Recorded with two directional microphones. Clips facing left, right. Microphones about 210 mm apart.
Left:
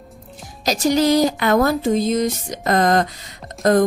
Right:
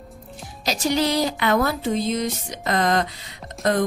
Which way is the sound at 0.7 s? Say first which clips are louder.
Left 5 dB; 45° left (ahead or behind).